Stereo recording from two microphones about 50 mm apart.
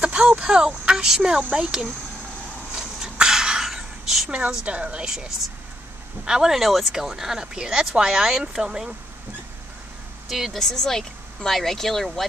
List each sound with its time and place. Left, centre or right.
0.0 s a sound: right
0.4 s speech: centre
1.4 s speech: right
2.7 s a sound: centre
4.3 s speech: right
6.5 s speech: centre
10.2 s a woman's voice: centre
10.6 s speech: centre